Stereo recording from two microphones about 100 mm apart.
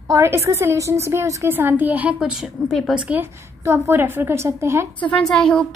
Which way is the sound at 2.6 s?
Centre (ahead or behind).